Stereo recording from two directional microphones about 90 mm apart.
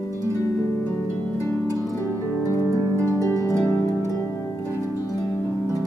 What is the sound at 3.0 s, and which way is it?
Harp, 35° left (ahead or behind).